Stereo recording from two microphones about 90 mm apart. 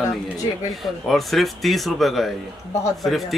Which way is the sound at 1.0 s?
Centre (ahead or behind).